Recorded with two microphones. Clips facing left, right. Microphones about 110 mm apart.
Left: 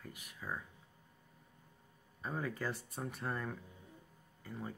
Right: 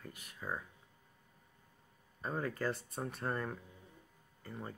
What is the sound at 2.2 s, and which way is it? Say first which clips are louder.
Speech: right 3 dB; 5° left (ahead or behind).